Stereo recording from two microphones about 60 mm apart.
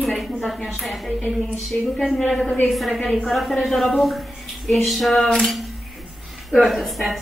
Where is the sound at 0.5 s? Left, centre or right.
Centre.